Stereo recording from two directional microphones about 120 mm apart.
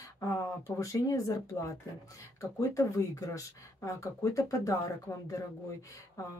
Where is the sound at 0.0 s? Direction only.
25° left (ahead or behind).